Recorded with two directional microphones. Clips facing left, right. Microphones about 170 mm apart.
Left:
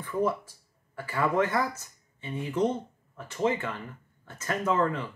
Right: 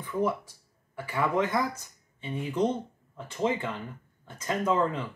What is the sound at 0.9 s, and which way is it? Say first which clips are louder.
Speech: left 1 dB; 15° right (ahead or behind).